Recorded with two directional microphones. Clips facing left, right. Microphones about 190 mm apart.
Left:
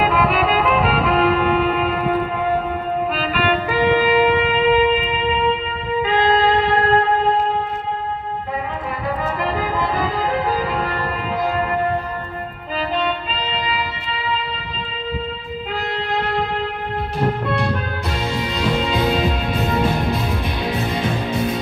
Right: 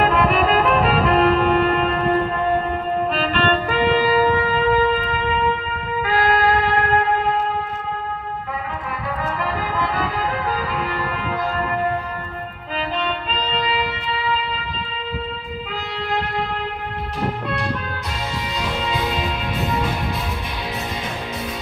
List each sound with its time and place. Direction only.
0.0 s music: centre (ahead or behind); by 7.1 s 25° left (ahead or behind)
9.2 s music: 15° left (ahead or behind)